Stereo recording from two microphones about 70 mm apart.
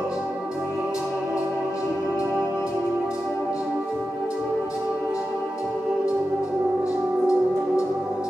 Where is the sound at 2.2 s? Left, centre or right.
Right.